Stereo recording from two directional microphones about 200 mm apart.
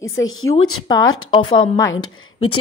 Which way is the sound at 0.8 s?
20° left (ahead or behind).